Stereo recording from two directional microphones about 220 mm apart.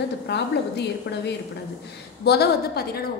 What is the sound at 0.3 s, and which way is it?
A woman's voice, 50° left (ahead or behind).